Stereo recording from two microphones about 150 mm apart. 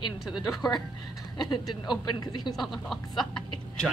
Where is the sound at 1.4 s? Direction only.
30° left (ahead or behind).